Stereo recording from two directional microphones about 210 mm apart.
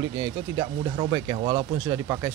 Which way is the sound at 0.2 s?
20° right (ahead or behind).